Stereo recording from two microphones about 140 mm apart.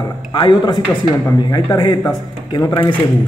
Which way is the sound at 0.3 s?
35° left (ahead or behind).